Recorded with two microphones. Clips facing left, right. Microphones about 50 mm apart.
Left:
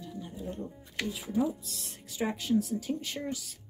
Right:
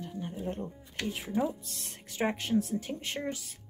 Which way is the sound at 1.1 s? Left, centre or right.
Right.